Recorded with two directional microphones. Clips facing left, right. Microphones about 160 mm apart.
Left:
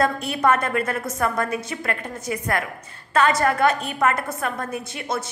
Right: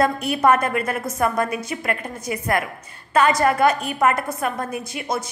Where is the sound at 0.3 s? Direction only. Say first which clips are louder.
Right 2 dB; 15° right (ahead or behind).